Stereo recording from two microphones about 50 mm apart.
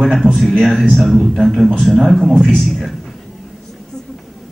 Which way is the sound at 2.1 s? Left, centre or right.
Centre.